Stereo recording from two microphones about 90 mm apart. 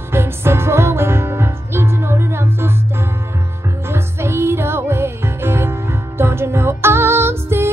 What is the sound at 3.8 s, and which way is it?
Music, 30° right (ahead or behind).